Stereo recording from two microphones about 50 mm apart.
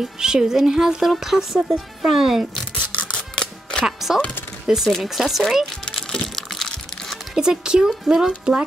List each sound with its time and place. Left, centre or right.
0.0 s speech: centre
2.7 s rub: left
3.2 s music: centre
4.6 s speech: centre
5.9 s music: centre
7.3 s speech: centre